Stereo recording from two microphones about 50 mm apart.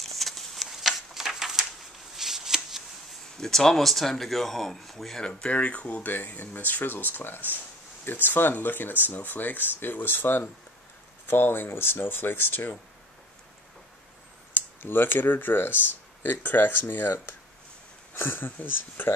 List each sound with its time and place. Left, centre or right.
0.0 s a sound: centre
2.1 s shuffling cards: centre
3.3 s speech: centre
5.3 s speech: left
6.0 s speech: left
14.5 s speech: left